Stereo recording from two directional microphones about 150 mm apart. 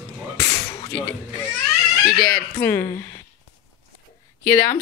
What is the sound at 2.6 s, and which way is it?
Speech, 15° left (ahead or behind).